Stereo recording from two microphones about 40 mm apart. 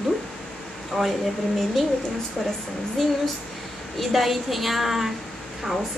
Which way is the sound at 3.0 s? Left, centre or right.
Centre.